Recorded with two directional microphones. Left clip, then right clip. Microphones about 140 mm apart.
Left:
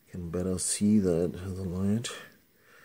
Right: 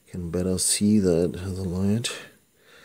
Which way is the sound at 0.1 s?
25° right (ahead or behind).